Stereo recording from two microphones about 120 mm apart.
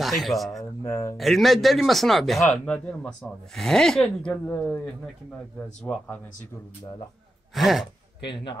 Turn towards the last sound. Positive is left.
turn(degrees=0)  # may be behind; listen again after turning